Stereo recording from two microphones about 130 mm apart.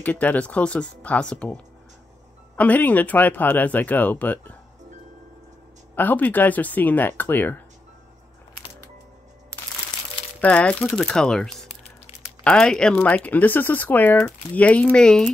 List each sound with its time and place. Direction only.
0.0 s speech: 10° left (ahead or behind)
5.9 s speech: 15° left (ahead or behind)
9.5 s a sound: 10° left (ahead or behind)
10.4 s speech: 10° left (ahead or behind)
12.1 s a sound: 50° left (ahead or behind)
12.4 s speech: 5° left (ahead or behind)